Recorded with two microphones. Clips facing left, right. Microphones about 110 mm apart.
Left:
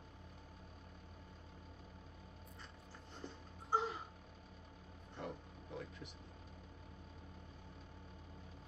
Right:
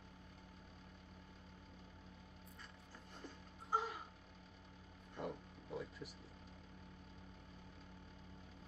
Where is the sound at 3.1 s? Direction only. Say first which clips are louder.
Left 4 dB; 30° left (ahead or behind).